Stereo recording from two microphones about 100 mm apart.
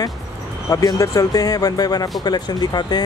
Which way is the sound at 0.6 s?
30° left (ahead or behind).